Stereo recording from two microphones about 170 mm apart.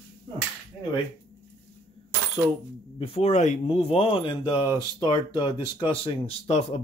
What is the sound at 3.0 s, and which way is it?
Speech, 40° left (ahead or behind).